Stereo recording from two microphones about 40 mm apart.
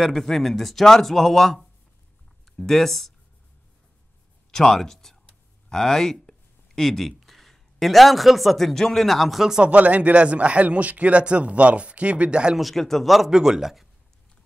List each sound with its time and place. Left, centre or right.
0.0 s speech: centre
4.5 s speech: centre
5.7 s a sound: centre
7.2 s a man's voice: centre
9.6 s speech: right
12.5 s a man's voice: centre
13.3 s speech: centre